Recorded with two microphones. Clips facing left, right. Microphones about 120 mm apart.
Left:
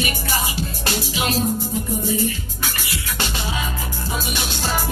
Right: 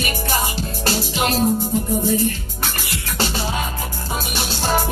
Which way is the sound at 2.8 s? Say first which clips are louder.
Right 6 dB; 35° right (ahead or behind).